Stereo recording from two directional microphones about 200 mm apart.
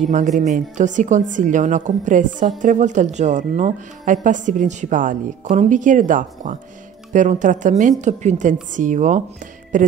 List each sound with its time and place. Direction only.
0.4 s a woman's voice: 35° right (ahead or behind)